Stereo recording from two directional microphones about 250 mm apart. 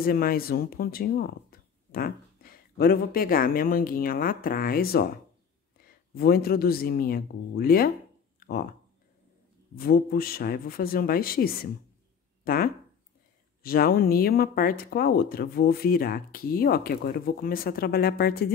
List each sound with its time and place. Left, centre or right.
0.0 s speech: left
8.4 s a sound: left
9.8 s speech: left